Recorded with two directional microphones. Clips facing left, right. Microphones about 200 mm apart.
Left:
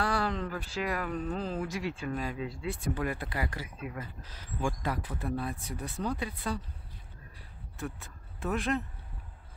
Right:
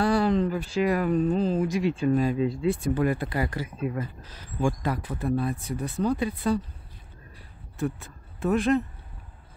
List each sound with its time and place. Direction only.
0.0 s speech: 20° right (ahead or behind)
7.8 s speech: 35° right (ahead or behind)